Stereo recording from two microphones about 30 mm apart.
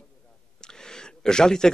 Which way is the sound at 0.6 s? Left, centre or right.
Left.